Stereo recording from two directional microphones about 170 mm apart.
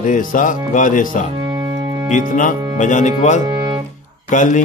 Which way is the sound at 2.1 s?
50° left (ahead or behind).